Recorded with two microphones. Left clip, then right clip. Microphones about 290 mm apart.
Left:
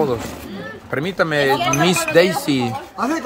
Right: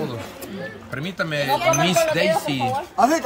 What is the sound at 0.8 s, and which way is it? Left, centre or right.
Speech, centre.